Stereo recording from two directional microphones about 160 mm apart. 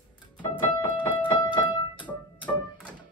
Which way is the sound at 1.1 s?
30° left (ahead or behind).